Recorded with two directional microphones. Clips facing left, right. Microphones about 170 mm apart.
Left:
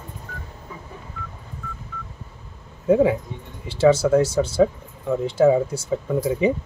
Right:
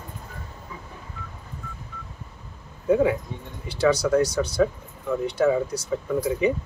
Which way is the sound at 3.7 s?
25° left (ahead or behind).